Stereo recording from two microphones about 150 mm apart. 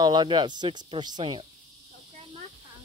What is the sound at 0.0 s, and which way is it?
Speech, 30° right (ahead or behind).